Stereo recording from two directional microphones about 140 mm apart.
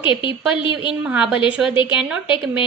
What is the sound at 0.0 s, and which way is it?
Speech, 35° left (ahead or behind).